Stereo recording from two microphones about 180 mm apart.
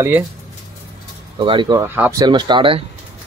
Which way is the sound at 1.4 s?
30° right (ahead or behind).